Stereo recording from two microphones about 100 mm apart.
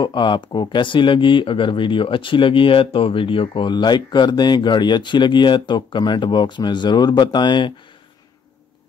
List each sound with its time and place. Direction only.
0.0 s speech: 50° left (ahead or behind)